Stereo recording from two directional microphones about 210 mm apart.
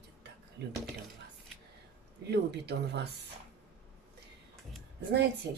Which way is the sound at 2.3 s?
50° right (ahead or behind).